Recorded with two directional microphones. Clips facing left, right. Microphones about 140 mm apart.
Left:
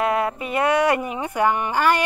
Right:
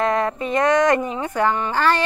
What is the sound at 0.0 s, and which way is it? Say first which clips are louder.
Speech: right 1 dB; 10° left (ahead or behind).